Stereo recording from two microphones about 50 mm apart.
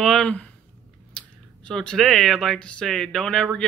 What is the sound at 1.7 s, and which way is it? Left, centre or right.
Speech, centre.